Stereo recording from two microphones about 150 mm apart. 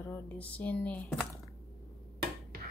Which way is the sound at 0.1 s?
10° left (ahead or behind).